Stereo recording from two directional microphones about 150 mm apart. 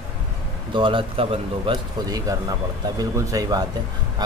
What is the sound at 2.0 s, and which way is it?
Speech, 25° right (ahead or behind).